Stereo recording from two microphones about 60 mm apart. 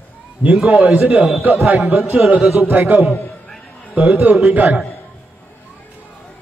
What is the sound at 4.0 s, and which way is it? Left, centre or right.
Speech, right.